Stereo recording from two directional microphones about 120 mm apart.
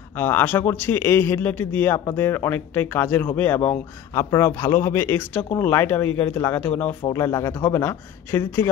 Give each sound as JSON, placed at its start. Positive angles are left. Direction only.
{"t": 0.2, "sound": "a man's voice", "side_deg": 15}
{"t": 7.2, "sound": "speech", "side_deg": 25}